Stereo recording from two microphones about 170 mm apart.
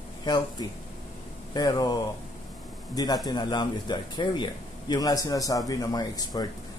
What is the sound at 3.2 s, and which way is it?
A man's voice, 25° left (ahead or behind).